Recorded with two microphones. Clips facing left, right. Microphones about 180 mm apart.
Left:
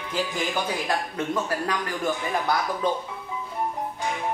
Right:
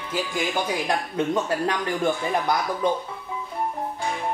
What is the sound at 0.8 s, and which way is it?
A man's voice, 25° right (ahead or behind).